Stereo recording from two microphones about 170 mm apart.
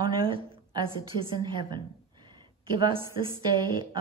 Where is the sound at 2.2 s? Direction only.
25° right (ahead or behind).